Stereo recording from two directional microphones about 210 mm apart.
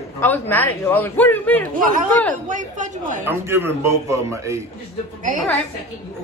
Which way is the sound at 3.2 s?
10° right (ahead or behind).